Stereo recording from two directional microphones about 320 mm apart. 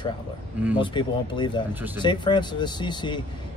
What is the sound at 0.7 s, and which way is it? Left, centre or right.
Speech, centre.